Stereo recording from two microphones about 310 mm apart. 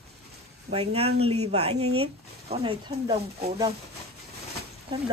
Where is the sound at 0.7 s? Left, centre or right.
Right.